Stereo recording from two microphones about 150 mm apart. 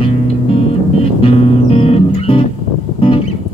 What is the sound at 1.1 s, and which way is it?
Music, 40° left (ahead or behind).